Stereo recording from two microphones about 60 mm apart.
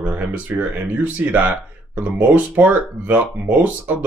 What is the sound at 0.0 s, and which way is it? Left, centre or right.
Speech, right.